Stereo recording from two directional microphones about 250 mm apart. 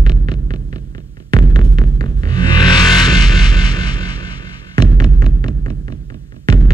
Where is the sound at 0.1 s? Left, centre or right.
Centre.